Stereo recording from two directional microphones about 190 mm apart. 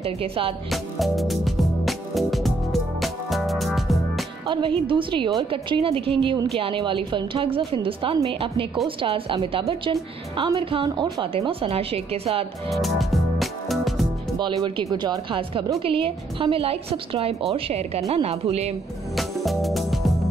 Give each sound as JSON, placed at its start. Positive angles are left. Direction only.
{"t": 0.0, "sound": "a woman's voice", "side_deg": -30}
{"t": 0.7, "sound": "music", "side_deg": 0}
{"t": 4.5, "sound": "a woman's voice", "side_deg": -25}
{"t": 12.6, "sound": "music", "side_deg": 0}
{"t": 14.4, "sound": "a woman's voice", "side_deg": -25}
{"t": 19.1, "sound": "music", "side_deg": 0}